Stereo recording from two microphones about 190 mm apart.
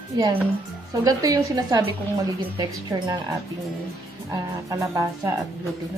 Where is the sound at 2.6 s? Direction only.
20° right (ahead or behind).